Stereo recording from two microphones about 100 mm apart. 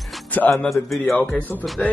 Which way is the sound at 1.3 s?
15° left (ahead or behind).